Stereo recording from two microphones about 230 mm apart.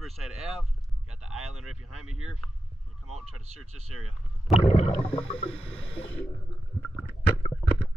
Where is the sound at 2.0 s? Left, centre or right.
Right.